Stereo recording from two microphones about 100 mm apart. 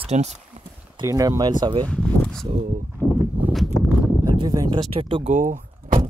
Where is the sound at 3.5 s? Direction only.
Centre (ahead or behind).